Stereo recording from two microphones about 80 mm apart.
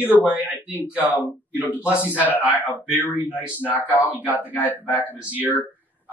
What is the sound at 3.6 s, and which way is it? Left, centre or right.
Speech, left.